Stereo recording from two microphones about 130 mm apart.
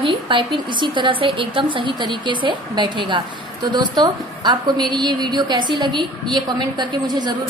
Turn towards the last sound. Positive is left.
turn(degrees=-30)  # may be behind; listen again after turning